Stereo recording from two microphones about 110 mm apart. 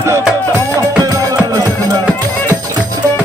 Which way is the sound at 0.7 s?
30° right (ahead or behind).